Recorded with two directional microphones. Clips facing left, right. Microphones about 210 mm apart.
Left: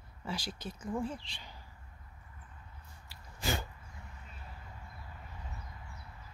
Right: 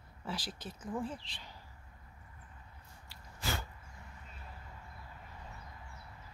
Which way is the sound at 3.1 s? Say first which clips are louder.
Left 4 dB; 15° left (ahead or behind).